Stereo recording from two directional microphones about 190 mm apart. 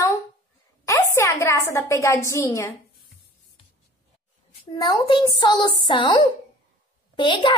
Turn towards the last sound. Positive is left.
turn(degrees=25)  # may be behind; listen again after turning